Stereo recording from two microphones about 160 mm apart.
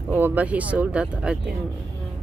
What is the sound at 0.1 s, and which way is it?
Speech, 10° right (ahead or behind).